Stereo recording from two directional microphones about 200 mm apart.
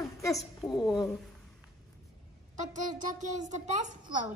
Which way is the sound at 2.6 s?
40° right (ahead or behind).